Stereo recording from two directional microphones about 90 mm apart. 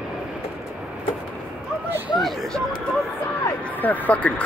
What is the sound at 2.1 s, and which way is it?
Speech, centre (ahead or behind).